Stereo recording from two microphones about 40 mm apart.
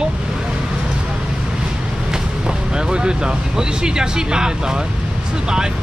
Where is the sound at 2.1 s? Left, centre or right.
Centre.